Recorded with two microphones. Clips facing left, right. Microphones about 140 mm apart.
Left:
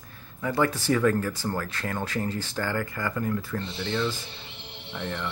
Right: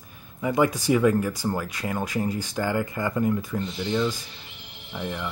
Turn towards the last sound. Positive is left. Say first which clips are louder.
# right 1 dB
turn(degrees=-5)  # may be behind; listen again after turning